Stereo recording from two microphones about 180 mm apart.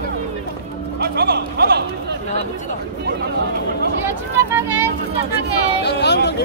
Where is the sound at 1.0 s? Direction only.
60° right (ahead or behind).